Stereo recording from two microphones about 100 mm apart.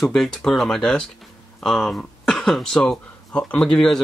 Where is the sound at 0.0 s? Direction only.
5° left (ahead or behind).